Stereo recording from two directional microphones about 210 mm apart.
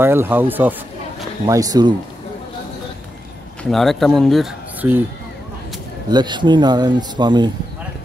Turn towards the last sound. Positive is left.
turn(degrees=-20)  # may be behind; listen again after turning